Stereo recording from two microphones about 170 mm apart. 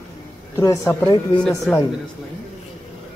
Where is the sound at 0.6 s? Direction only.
20° left (ahead or behind).